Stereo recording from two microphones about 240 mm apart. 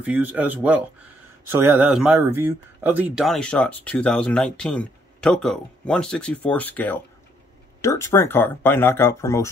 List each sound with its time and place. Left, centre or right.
0.0 s speech: centre